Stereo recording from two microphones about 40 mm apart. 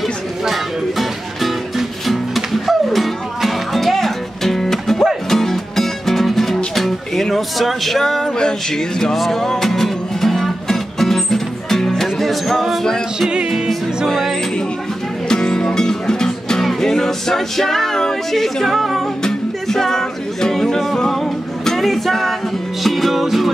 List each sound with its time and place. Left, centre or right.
0.5 s music: centre
8.0 s music: centre
14.0 s music: centre
15.2 s music: centre
19.2 s music: centre